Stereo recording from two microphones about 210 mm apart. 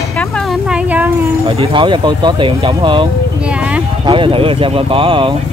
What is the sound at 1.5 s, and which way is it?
Speech, 25° right (ahead or behind).